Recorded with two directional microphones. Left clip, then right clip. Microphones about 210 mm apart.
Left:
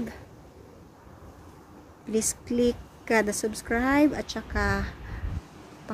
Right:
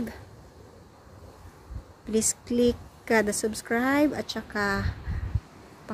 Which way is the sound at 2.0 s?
15° right (ahead or behind).